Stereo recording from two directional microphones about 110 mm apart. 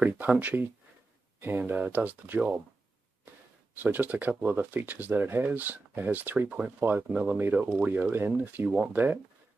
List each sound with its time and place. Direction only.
0.0 s speech: 15° right (ahead or behind)
3.8 s speech: 15° right (ahead or behind)